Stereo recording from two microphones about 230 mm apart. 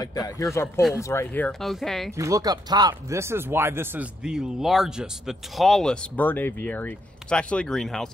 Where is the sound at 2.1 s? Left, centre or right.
Centre.